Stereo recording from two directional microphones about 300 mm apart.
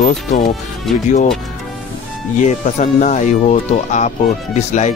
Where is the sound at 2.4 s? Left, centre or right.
Left.